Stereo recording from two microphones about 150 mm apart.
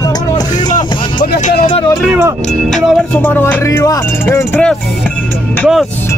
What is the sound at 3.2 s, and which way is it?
Speech, 15° left (ahead or behind).